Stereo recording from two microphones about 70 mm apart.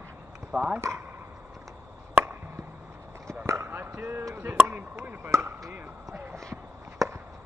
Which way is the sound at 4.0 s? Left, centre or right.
Right.